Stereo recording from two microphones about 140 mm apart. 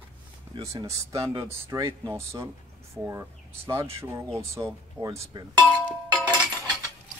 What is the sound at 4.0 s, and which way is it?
Speech, 20° right (ahead or behind).